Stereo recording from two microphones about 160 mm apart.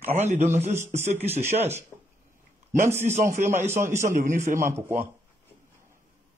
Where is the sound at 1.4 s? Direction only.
15° right (ahead or behind).